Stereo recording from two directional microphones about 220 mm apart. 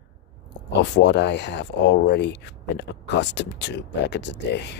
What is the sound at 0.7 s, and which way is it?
Speech, 50° left (ahead or behind).